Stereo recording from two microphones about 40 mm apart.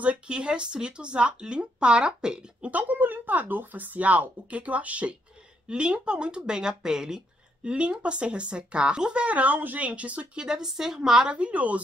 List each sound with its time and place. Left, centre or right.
0.3 s speech: right
2.7 s speech: right
5.7 s speech: right
7.6 s speech: right
9.2 s speech: right
9.8 s speech: right
10.3 s a woman's voice: centre
11.2 s speech: right